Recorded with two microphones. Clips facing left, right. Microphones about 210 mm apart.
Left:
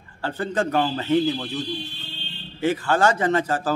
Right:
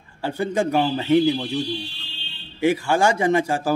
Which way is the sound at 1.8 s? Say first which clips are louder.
Even; 50° left (ahead or behind).